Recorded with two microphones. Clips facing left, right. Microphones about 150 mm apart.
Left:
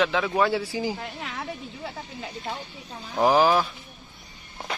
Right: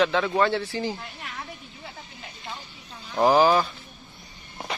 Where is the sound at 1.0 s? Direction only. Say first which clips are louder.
Left 4 dB; 80° left.